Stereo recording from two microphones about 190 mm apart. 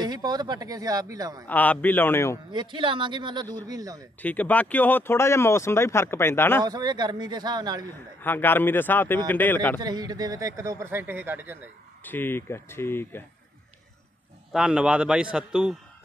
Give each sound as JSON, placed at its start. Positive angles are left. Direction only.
{"t": 0.0, "sound": "a man's voice", "side_deg": -20}
{"t": 1.5, "sound": "speech", "side_deg": 10}
{"t": 2.5, "sound": "a man's voice", "side_deg": -25}
{"t": 4.2, "sound": "speech", "side_deg": 10}
{"t": 6.6, "sound": "a man's voice", "side_deg": -20}
{"t": 8.2, "sound": "speech", "side_deg": 10}
{"t": 9.8, "sound": "speech", "side_deg": -20}
{"t": 12.0, "sound": "speech", "side_deg": 10}
{"t": 14.5, "sound": "a man's voice", "side_deg": -5}